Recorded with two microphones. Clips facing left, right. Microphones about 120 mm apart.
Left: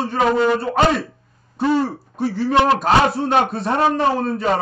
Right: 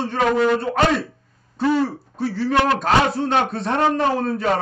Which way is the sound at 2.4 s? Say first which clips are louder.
Left 3 dB; 20° left (ahead or behind).